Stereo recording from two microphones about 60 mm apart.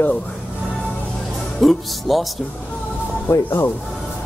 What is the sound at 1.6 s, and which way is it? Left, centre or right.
Speech, centre.